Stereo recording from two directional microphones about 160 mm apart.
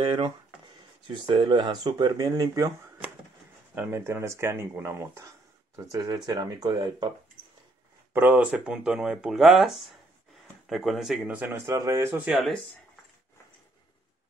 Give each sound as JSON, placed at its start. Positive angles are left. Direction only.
{"t": 0.0, "sound": "a man's voice", "side_deg": -35}
{"t": 8.1, "sound": "a man's voice", "side_deg": -10}